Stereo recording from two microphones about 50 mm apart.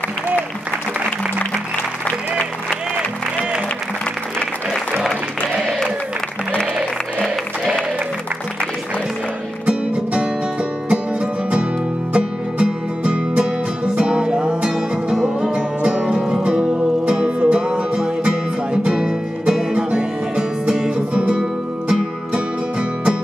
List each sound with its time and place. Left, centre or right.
2.0 s music: left
10.9 s music: centre